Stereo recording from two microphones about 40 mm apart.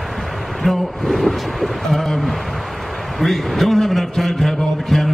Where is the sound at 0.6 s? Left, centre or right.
Centre.